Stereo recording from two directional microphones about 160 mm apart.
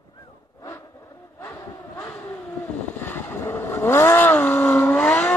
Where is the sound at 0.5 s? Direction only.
20° left (ahead or behind).